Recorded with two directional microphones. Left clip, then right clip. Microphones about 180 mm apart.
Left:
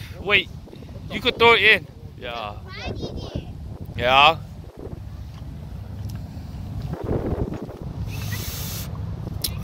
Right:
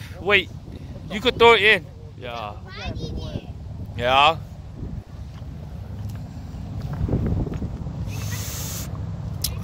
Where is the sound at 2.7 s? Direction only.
65° right (ahead or behind).